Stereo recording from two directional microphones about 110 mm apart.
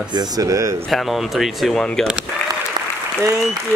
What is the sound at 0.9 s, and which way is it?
Speech, centre (ahead or behind).